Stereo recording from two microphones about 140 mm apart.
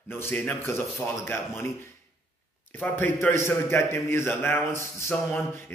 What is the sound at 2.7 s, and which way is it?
A man's voice, 15° left (ahead or behind).